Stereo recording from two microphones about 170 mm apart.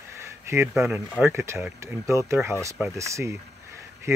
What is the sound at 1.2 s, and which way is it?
Speech, 15° right (ahead or behind).